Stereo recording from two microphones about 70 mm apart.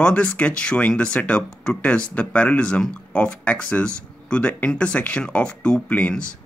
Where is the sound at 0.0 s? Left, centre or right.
Centre.